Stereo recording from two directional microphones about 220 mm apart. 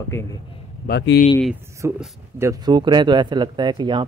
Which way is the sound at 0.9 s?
45° left (ahead or behind).